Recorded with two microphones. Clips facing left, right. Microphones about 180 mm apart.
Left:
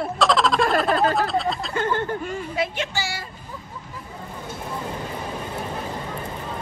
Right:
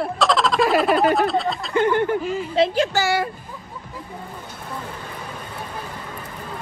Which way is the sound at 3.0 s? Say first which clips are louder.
Right 9 dB; 55° right (ahead or behind).